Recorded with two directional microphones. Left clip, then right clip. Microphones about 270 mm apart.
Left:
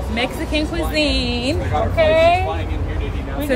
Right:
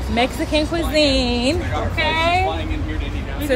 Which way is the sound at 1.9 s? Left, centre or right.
Centre.